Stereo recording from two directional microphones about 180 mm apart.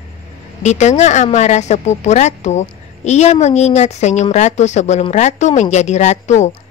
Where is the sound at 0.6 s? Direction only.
40° left (ahead or behind).